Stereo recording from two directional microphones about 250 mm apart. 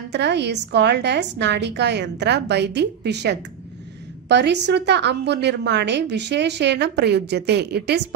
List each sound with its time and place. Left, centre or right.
0.1 s a woman's voice: right